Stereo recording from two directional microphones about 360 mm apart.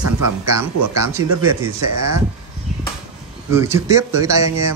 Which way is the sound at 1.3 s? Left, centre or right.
Right.